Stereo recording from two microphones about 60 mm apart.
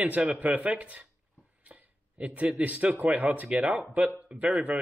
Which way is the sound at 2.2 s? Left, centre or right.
Right.